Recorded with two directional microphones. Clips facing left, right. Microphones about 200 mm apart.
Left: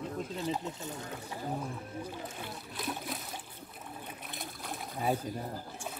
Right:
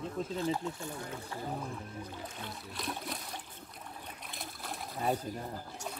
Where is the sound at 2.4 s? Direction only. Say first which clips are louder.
Left 1 dB; centre (ahead or behind).